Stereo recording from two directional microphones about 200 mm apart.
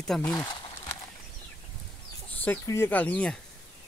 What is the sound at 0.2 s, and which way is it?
Speech, 15° left (ahead or behind).